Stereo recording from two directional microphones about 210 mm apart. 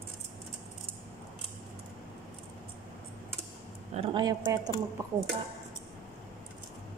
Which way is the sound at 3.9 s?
25° right (ahead or behind).